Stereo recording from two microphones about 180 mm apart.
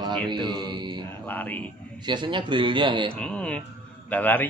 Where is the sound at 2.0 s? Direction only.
25° right (ahead or behind).